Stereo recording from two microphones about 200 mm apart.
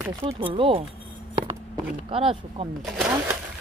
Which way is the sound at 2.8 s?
5° right (ahead or behind).